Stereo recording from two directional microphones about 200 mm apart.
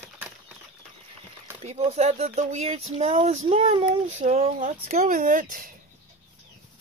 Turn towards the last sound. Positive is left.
turn(degrees=-45)  # may be behind; listen again after turning